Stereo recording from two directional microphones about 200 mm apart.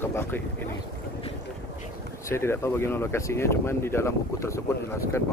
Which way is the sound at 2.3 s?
15° left (ahead or behind).